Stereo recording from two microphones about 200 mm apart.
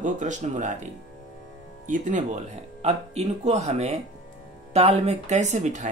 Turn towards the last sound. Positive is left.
turn(degrees=-35)  # may be behind; listen again after turning